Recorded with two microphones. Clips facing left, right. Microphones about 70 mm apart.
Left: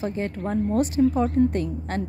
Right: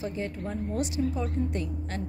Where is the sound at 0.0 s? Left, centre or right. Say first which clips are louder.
Left 5 dB; left.